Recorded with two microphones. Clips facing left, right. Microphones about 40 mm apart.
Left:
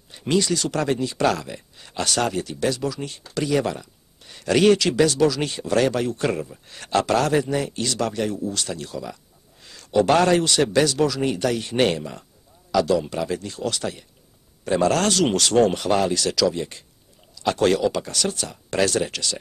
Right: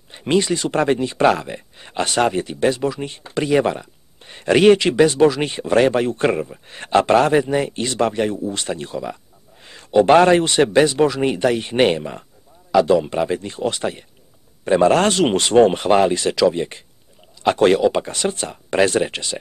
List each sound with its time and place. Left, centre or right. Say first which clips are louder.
0.1 s speech: right 3 dB; right